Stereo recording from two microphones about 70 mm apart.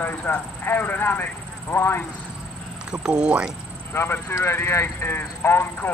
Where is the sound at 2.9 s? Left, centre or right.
Centre.